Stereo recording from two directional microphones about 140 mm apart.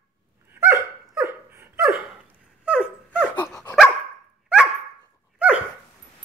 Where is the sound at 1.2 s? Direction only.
15° right (ahead or behind).